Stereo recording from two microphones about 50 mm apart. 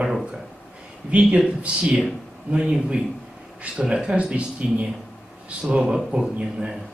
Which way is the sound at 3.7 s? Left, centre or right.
Centre.